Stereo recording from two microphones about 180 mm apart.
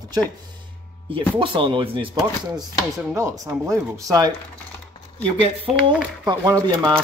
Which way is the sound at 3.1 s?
15° right (ahead or behind).